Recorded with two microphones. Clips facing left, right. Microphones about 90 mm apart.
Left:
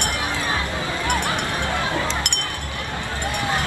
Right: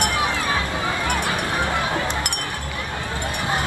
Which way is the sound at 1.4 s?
20° right (ahead or behind).